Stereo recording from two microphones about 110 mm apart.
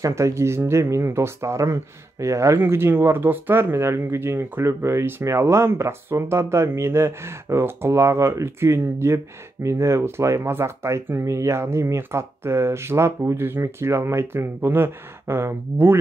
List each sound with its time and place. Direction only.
0.0 s speech: 25° right (ahead or behind)